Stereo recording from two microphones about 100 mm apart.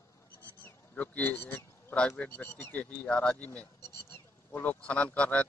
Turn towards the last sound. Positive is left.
turn(degrees=10)  # may be behind; listen again after turning